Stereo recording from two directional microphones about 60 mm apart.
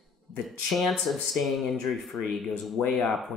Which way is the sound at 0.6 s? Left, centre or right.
Centre.